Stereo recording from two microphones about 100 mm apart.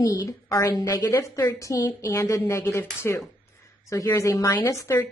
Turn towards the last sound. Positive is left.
turn(degrees=25)  # may be behind; listen again after turning